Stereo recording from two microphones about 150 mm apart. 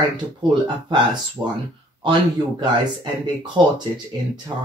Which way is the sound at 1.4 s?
20° right (ahead or behind).